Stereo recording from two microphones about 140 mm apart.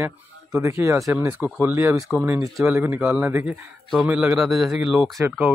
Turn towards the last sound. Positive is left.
turn(degrees=-15)  # may be behind; listen again after turning